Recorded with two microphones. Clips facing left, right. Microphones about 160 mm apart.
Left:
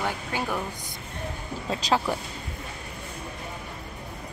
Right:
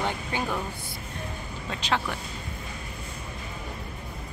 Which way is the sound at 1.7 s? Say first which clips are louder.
Left 4 dB; 35° left (ahead or behind).